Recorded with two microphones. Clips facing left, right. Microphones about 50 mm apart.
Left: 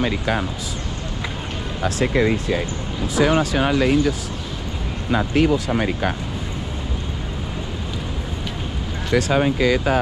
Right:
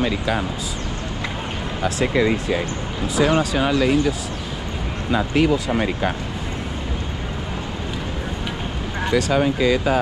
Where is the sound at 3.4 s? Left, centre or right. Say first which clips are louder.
Even; left.